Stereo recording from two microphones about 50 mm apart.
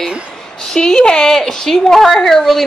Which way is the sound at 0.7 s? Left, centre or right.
Centre.